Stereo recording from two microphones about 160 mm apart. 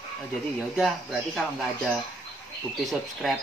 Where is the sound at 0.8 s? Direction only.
Centre (ahead or behind).